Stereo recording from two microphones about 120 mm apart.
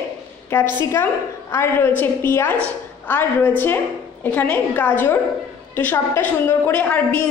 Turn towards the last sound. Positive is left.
turn(degrees=15)  # may be behind; listen again after turning